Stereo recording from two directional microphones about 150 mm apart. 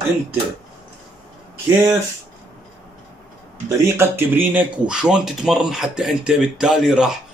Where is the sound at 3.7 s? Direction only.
15° right (ahead or behind).